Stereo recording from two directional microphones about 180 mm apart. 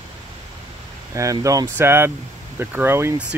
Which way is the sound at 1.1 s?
15° right (ahead or behind).